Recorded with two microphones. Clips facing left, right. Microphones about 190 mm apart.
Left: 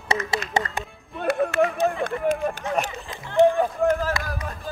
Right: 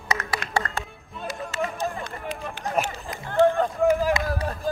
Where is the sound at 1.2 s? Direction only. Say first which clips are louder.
Left 9 dB; 60° left (ahead or behind).